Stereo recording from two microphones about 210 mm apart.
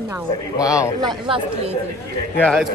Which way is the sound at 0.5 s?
15° left (ahead or behind).